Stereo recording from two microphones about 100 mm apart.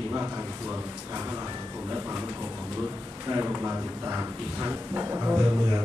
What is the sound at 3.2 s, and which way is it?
Speech, 25° right (ahead or behind).